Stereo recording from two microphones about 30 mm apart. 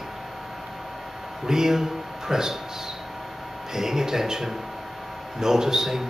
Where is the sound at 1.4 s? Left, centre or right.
Centre.